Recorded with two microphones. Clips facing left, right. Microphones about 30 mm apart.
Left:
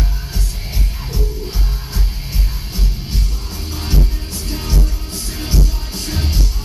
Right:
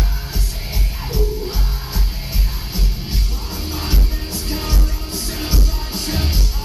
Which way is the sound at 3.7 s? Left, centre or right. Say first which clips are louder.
Left 3 dB; centre.